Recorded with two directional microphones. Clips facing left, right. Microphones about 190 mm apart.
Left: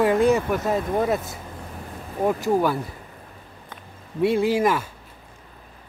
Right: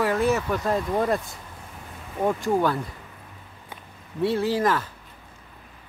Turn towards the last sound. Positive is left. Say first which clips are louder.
# left 2 dB
turn(degrees=10)  # may be behind; listen again after turning